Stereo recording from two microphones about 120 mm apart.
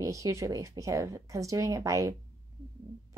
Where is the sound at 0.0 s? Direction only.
25° right (ahead or behind).